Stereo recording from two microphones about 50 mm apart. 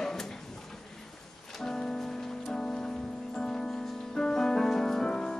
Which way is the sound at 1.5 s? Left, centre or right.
Centre.